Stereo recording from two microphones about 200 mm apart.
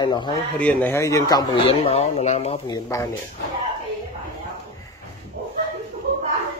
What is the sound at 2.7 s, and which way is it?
Speech, 20° left (ahead or behind).